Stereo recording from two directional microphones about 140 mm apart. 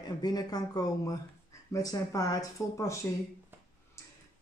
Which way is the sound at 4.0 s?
20° left (ahead or behind).